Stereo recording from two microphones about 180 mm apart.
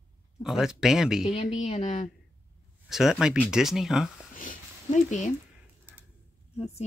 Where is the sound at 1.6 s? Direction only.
35° left (ahead or behind).